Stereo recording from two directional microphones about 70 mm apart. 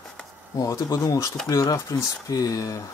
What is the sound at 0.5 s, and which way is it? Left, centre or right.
Speech, left.